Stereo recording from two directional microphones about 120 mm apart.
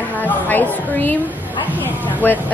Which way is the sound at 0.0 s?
15° left (ahead or behind).